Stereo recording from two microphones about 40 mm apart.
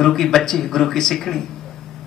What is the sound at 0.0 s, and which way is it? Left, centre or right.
Speech, centre.